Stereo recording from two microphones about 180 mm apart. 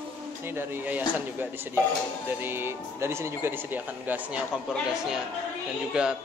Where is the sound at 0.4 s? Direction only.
10° right (ahead or behind).